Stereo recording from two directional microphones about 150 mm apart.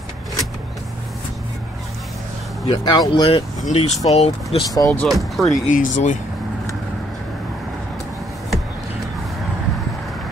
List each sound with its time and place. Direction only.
2.6 s speech: 30° left (ahead or behind)
3.6 s speech: 45° left (ahead or behind)
4.6 s speech: 25° left (ahead or behind)
5.0 s speech: centre (ahead or behind)
5.7 s speech: 55° left (ahead or behind)